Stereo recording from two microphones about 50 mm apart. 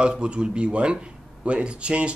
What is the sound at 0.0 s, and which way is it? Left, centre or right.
Speech, centre.